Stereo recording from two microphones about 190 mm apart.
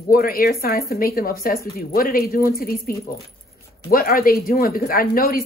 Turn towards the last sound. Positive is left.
turn(degrees=50)  # may be behind; listen again after turning